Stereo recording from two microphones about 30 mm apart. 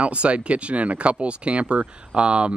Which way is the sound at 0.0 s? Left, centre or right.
Right.